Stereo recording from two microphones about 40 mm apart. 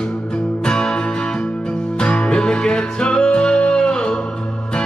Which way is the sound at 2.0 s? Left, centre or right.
Left.